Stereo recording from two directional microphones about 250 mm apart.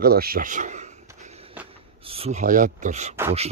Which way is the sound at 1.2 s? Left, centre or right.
Right.